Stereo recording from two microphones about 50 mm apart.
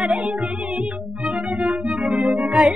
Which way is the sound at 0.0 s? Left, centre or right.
Centre.